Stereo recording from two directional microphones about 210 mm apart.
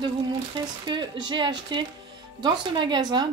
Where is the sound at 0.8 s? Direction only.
20° right (ahead or behind).